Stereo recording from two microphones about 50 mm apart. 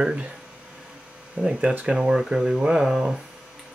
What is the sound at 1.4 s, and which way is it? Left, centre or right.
Speech, right.